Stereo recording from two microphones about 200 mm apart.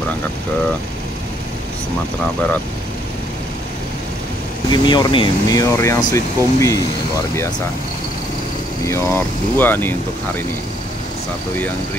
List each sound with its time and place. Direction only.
4.6 s speech: 20° left (ahead or behind)
8.8 s speech: 10° left (ahead or behind)